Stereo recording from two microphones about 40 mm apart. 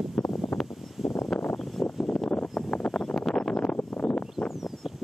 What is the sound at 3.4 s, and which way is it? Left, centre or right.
Wind noise, centre.